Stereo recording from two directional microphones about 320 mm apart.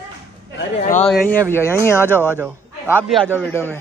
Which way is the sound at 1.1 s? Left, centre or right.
Centre.